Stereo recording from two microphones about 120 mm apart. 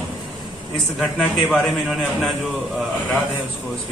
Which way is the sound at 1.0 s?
Centre (ahead or behind).